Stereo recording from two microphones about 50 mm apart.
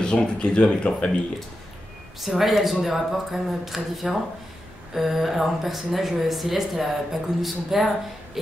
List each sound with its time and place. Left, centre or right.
0.0 s speech: centre
2.2 s speech: centre